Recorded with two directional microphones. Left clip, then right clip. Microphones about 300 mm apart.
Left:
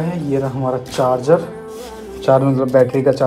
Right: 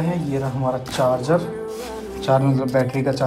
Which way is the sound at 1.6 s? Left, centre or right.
Centre.